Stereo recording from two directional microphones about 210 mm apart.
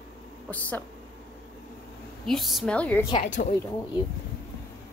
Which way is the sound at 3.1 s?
35° left (ahead or behind).